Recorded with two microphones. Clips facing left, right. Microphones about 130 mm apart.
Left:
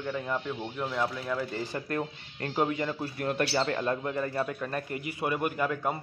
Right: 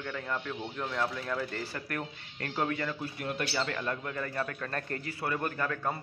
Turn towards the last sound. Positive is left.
turn(degrees=15)  # may be behind; listen again after turning